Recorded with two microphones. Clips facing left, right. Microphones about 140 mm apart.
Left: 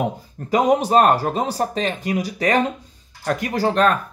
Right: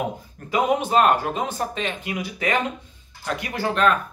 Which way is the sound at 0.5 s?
40° left (ahead or behind).